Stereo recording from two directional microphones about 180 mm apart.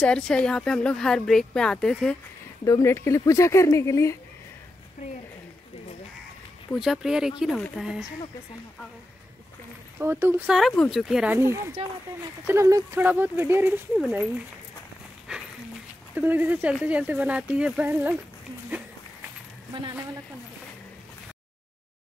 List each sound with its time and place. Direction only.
0.0 s speech: 5° left (ahead or behind)
2.6 s speech: 15° left (ahead or behind)
6.7 s speech: centre (ahead or behind)
9.9 s speech: 10° right (ahead or behind)
11.3 s speech: 15° right (ahead or behind)
15.3 s speech: 5° right (ahead or behind)